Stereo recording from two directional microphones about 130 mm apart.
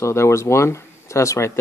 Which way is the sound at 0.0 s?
20° left (ahead or behind).